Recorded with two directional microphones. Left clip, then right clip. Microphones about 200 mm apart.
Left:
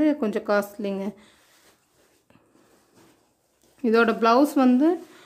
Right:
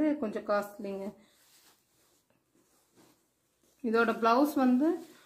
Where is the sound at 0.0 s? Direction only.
45° left (ahead or behind).